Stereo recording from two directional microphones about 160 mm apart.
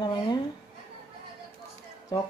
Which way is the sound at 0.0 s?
25° left (ahead or behind).